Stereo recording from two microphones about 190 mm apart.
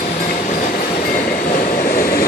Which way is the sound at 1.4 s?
45° left (ahead or behind).